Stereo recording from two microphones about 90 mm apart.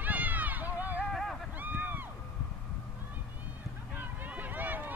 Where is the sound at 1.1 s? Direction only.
Centre (ahead or behind).